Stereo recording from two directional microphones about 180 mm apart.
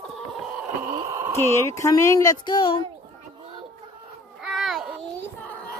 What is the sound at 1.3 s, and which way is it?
Speech, 15° left (ahead or behind).